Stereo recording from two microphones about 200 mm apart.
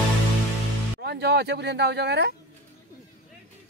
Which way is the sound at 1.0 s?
55° right (ahead or behind).